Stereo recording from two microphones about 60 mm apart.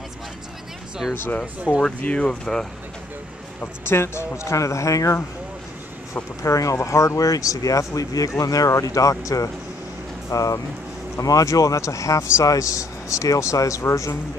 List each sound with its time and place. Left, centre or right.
1.0 s speech: centre
1.4 s speech: centre
2.0 s speech: centre
3.8 s a man's voice: left
6.4 s a man's voice: left